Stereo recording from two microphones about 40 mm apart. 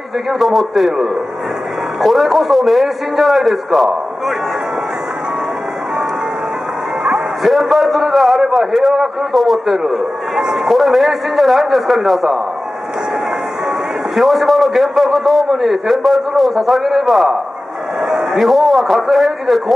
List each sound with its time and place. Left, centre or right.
0.4 s a man's voice: centre
7.4 s a man's voice: centre
10.3 s a man's voice: centre
10.7 s a man's voice: centre
14.1 s a man's voice: centre
18.0 s a sound: centre
18.4 s a man's voice: centre